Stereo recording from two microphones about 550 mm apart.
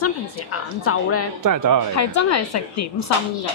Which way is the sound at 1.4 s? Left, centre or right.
Right.